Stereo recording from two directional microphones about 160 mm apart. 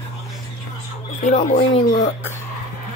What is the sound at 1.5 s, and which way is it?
Speech, 35° left (ahead or behind).